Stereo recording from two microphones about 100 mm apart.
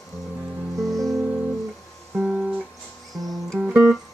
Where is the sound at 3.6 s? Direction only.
10° right (ahead or behind).